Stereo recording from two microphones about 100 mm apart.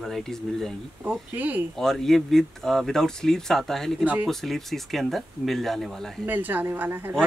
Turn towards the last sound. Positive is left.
turn(degrees=-20)  # may be behind; listen again after turning